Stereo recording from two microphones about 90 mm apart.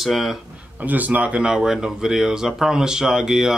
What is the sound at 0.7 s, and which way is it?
Speech, 20° right (ahead or behind).